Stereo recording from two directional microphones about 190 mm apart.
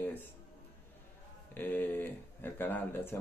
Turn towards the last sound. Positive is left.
turn(degrees=10)  # may be behind; listen again after turning